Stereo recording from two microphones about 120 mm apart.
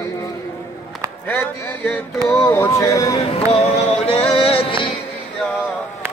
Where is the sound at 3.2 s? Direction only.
55° left (ahead or behind).